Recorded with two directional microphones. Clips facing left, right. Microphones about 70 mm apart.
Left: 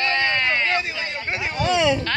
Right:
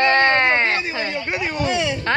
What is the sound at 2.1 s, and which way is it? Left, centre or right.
Speech, right.